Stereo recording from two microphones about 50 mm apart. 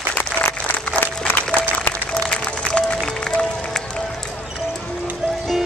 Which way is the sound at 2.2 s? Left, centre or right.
Left.